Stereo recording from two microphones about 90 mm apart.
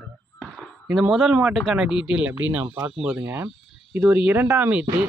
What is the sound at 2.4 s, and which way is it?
Speech, 20° right (ahead or behind).